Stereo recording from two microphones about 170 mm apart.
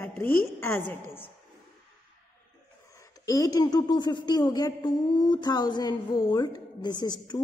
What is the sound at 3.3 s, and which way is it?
A woman's voice, 20° left (ahead or behind).